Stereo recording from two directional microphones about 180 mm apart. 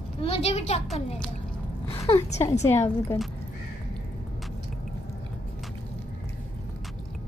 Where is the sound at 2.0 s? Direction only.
35° left (ahead or behind).